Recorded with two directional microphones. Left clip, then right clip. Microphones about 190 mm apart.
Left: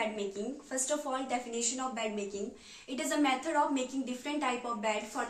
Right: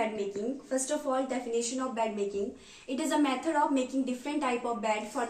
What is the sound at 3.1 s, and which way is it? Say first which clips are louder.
A woman's voice: right 2 dB; 5° left (ahead or behind).